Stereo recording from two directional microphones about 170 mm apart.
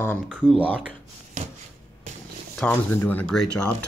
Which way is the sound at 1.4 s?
45° right (ahead or behind).